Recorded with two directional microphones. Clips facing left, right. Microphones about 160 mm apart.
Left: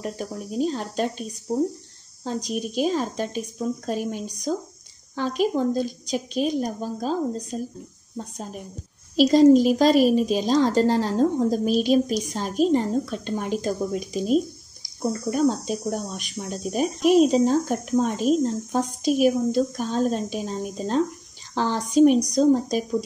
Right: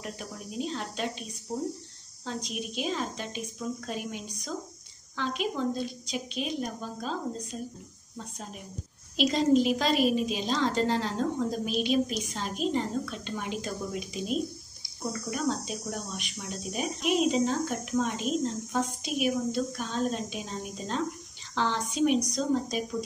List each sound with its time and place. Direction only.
0.0 s speech: 40° left (ahead or behind)
9.1 s speech: 40° left (ahead or behind)